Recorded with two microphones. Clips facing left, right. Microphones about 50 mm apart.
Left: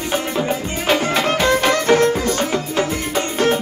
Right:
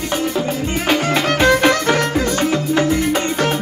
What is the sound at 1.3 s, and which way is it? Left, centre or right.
Music, right.